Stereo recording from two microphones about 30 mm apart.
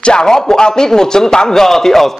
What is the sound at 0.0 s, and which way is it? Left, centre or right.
Speech, left.